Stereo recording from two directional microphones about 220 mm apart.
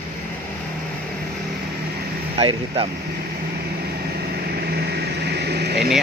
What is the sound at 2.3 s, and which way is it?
Speech, 25° right (ahead or behind).